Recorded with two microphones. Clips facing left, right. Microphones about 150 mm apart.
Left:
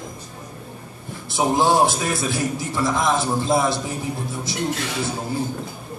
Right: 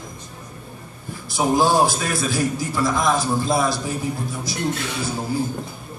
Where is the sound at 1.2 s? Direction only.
25° left (ahead or behind).